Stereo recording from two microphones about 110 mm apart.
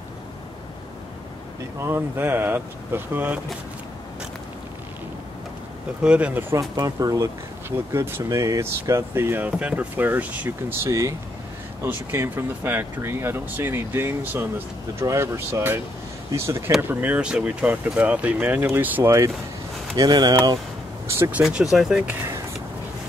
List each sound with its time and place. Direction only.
1.8 s speech: 20° right (ahead or behind)
6.0 s speech: 10° right (ahead or behind)
6.8 s speech: 30° right (ahead or behind)
20.0 s speech: 40° right (ahead or behind)
21.1 s speech: 20° right (ahead or behind)
21.4 s speech: 5° right (ahead or behind)